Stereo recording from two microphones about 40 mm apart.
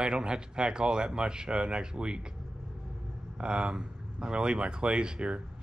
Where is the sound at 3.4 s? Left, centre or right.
Right.